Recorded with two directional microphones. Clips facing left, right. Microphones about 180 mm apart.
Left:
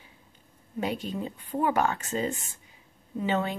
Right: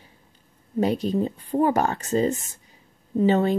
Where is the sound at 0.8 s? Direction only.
40° right (ahead or behind).